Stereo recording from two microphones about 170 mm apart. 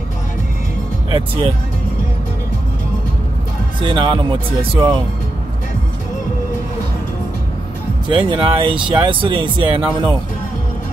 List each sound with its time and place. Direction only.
1.1 s speech: 30° right (ahead or behind)
3.8 s speech: 30° right (ahead or behind)
8.3 s speech: 30° right (ahead or behind)